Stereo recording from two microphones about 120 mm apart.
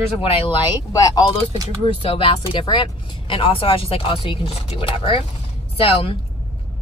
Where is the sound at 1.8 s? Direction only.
50° left (ahead or behind).